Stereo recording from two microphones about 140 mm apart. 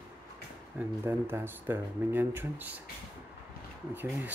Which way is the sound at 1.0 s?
15° right (ahead or behind).